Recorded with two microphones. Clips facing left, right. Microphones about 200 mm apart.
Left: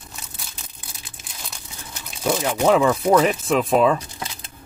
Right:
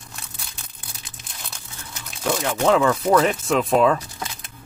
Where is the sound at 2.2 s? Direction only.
10° left (ahead or behind).